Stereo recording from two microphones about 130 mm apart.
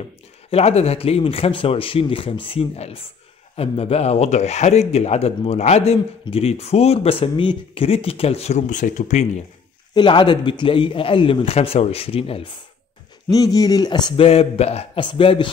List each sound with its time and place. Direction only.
0.5 s speech: 55° left (ahead or behind)
9.9 s speech: 35° left (ahead or behind)
13.3 s speech: 30° left (ahead or behind)
14.1 s speech: 50° left (ahead or behind)